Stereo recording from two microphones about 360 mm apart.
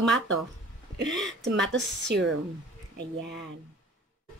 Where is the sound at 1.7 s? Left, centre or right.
Right.